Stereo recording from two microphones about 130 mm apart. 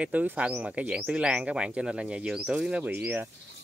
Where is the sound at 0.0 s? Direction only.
10° right (ahead or behind).